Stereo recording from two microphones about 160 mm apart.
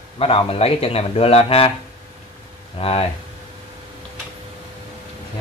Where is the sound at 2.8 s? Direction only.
40° left (ahead or behind).